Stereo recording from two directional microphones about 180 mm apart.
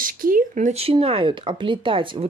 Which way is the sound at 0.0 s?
50° right (ahead or behind).